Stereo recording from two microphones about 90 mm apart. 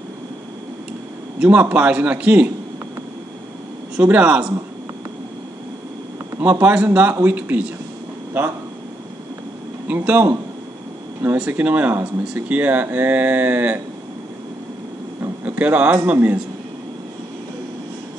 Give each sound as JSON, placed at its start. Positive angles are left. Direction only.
{"t": 1.4, "sound": "a man's voice", "side_deg": -15}
{"t": 4.0, "sound": "a man's voice", "side_deg": -15}
{"t": 6.4, "sound": "a man's voice", "side_deg": -25}
{"t": 9.8, "sound": "speech", "side_deg": -20}
{"t": 11.3, "sound": "a man's voice", "side_deg": -15}
{"t": 15.4, "sound": "speech", "side_deg": -20}